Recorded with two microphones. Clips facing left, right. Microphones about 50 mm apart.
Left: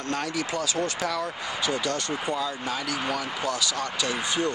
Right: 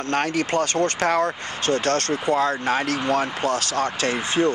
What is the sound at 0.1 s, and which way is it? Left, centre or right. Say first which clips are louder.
Speech: right 7 dB; right.